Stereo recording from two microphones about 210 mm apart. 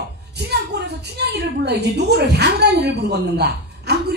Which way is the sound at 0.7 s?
55° right (ahead or behind).